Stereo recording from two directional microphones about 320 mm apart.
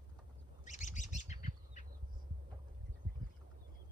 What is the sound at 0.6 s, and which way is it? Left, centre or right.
Squawk, left.